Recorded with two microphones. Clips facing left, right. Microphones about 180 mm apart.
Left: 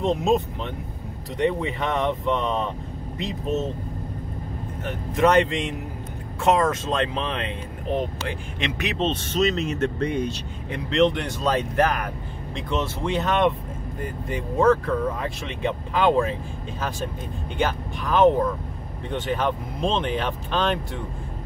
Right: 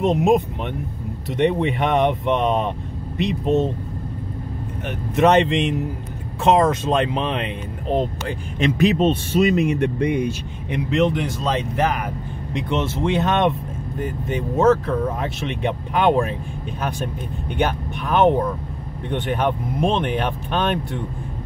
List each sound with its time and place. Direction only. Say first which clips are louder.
0.0 s speech: right 4 dB; 15° right (ahead or behind)
1.4 s speech: right 4 dB; 20° right (ahead or behind)
4.8 s speech: right 3 dB; 25° right (ahead or behind)
8.3 s speech: right 7 dB; 40° right (ahead or behind)
8.9 s speech: right 6 dB; 10° right (ahead or behind)
12.5 s speech: right 4 dB; 20° right (ahead or behind)
17.6 s speech: right 3 dB; 20° right (ahead or behind)